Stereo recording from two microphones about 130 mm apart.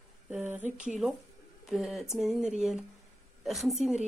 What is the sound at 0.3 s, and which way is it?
A woman's voice, 15° right (ahead or behind).